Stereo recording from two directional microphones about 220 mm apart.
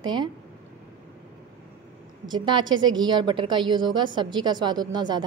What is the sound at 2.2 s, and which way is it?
A woman's voice, 20° right (ahead or behind).